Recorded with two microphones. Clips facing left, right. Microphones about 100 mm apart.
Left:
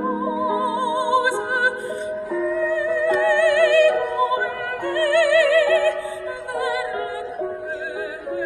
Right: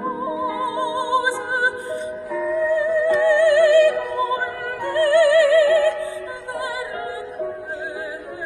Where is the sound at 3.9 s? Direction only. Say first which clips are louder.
Left 2 dB; 20° left (ahead or behind).